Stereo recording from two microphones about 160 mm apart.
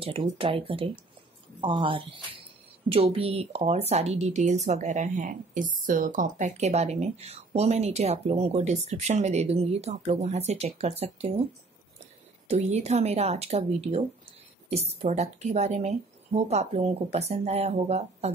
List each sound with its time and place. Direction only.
0.0 s a woman's voice: 35° right (ahead or behind)
12.4 s a woman's voice: 45° right (ahead or behind)